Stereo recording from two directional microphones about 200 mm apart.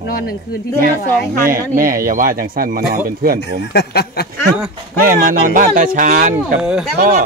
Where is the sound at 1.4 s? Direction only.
45° right (ahead or behind).